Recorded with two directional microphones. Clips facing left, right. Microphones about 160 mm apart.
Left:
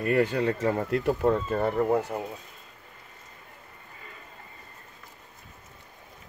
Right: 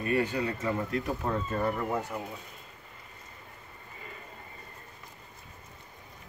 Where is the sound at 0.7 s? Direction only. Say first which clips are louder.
Left 5 dB; 65° left (ahead or behind).